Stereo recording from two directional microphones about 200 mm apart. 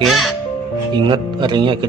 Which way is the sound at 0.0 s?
Centre (ahead or behind).